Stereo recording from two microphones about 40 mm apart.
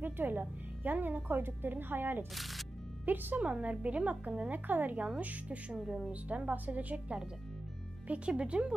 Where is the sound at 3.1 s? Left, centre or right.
Right.